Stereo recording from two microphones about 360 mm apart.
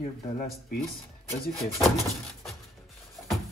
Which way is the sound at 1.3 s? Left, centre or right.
Centre.